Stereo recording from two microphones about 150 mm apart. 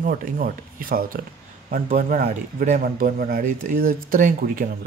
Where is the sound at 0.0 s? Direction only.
70° right (ahead or behind).